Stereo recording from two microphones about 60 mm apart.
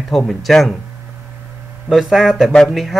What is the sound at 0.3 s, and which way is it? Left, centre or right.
Speech, centre.